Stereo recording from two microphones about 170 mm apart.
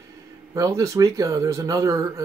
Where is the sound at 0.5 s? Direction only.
20° right (ahead or behind).